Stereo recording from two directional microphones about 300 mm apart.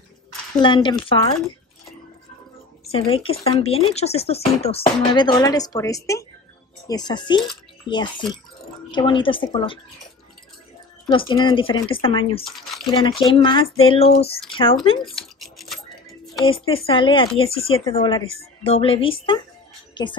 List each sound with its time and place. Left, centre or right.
0.6 s speech: centre
2.9 s speech: centre
11.1 s speech: centre
12.4 s drip: centre
12.9 s speech: centre
15.1 s a sound: centre
16.4 s speech: centre
19.9 s music: centre